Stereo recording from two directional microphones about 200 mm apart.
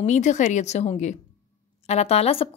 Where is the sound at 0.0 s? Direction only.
35° left (ahead or behind).